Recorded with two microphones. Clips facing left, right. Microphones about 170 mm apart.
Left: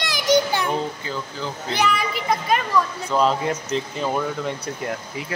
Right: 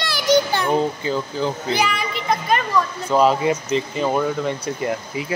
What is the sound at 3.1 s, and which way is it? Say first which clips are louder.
Speech: right 4 dB; 10° right (ahead or behind).